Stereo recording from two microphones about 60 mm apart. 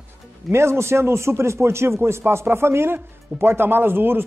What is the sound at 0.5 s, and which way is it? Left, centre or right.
A man's voice, right.